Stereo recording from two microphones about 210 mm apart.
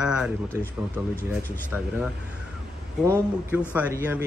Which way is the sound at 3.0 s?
10° right (ahead or behind).